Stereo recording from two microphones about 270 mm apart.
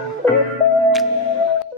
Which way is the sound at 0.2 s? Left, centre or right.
Centre.